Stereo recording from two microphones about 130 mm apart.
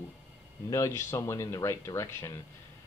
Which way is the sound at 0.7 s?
20° left (ahead or behind).